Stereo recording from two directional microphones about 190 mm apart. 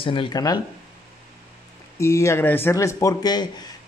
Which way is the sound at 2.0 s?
15° left (ahead or behind).